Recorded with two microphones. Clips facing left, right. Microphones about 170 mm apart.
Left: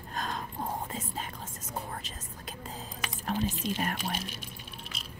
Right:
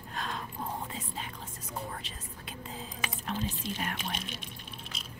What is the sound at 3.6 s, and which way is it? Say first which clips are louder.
Speech: left 5 dB; 15° left (ahead or behind).